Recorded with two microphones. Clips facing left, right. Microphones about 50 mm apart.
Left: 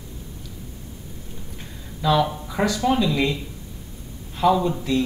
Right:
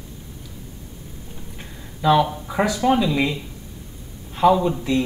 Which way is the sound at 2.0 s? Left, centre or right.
Centre.